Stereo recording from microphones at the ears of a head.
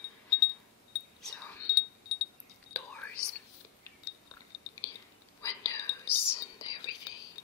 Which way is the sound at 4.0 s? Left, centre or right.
Left.